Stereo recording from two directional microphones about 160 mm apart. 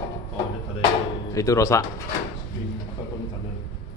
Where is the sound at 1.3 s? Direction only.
20° left (ahead or behind).